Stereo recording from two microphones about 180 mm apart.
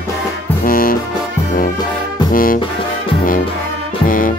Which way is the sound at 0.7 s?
50° left (ahead or behind).